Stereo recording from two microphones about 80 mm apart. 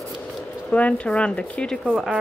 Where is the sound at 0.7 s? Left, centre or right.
Centre.